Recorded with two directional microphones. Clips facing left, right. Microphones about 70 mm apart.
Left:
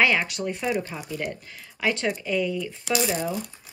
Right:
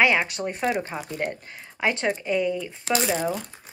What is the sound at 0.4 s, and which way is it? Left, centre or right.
Speech, right.